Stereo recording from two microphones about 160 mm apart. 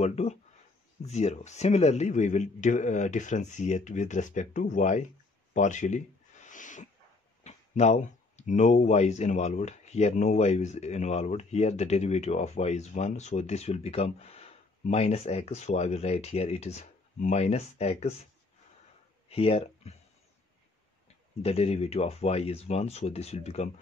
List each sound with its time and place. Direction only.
0.0 s speech: 45° left (ahead or behind)
5.5 s a sound: 50° left (ahead or behind)
7.4 s speech: 45° left (ahead or behind)
19.2 s speech: 35° left (ahead or behind)
21.4 s speech: 40° left (ahead or behind)